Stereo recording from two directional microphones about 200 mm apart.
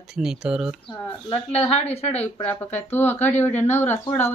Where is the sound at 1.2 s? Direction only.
30° left (ahead or behind).